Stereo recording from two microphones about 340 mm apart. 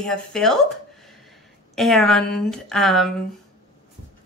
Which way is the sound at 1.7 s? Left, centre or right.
Centre.